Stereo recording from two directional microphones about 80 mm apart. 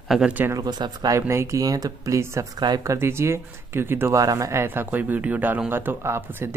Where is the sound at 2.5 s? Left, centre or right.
Right.